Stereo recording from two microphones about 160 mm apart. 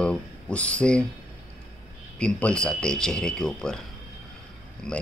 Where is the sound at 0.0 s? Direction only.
5° left (ahead or behind).